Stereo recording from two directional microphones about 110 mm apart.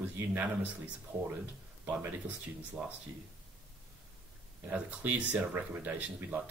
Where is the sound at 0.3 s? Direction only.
15° right (ahead or behind).